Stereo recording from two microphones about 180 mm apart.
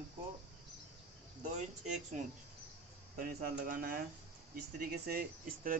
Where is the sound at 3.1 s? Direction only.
50° right (ahead or behind).